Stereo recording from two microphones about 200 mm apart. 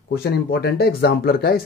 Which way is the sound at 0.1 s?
50° left (ahead or behind).